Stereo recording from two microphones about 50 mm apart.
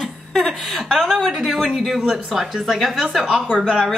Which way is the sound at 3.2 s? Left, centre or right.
Right.